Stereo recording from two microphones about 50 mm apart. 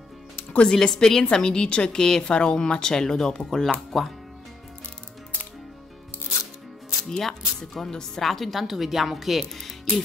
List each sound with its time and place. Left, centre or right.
0.7 s a woman's voice: centre
7.1 s speech: centre